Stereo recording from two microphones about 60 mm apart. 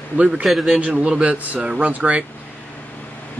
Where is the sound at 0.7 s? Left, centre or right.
Centre.